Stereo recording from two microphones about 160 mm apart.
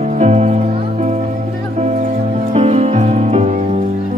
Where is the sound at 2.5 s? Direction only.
45° right (ahead or behind).